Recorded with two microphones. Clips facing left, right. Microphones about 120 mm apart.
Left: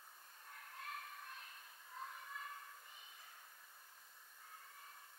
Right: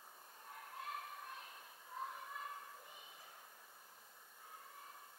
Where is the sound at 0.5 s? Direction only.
15° right (ahead or behind).